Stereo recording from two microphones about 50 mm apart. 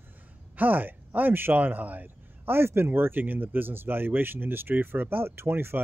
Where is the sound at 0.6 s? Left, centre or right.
Right.